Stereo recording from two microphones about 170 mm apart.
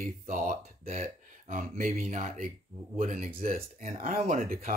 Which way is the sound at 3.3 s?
35° right (ahead or behind).